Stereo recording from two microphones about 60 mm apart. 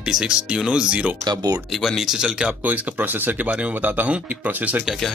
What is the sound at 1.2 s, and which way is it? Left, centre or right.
Speech, right.